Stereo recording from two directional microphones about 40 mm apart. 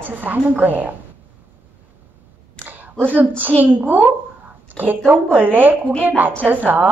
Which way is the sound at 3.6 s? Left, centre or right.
Right.